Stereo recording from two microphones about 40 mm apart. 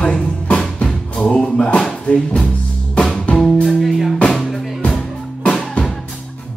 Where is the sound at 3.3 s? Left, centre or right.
Centre.